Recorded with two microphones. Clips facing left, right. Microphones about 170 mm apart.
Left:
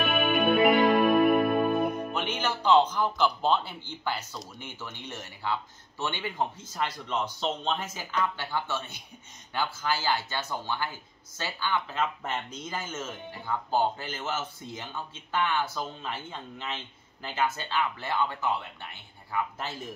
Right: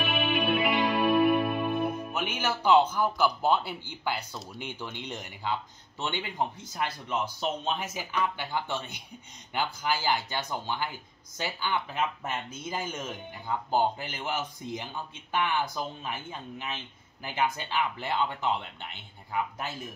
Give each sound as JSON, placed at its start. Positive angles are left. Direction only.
{"t": 0.0, "sound": "music", "side_deg": 50}
{"t": 2.1, "sound": "speech", "side_deg": -10}